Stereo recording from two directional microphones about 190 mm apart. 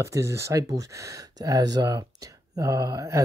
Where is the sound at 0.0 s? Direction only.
15° right (ahead or behind).